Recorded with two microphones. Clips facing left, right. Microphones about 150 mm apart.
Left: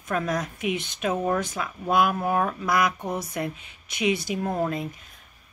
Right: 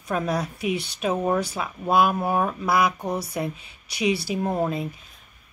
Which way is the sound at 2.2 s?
15° right (ahead or behind).